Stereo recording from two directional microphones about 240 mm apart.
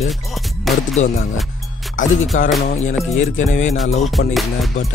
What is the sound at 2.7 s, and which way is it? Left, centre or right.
Music, left.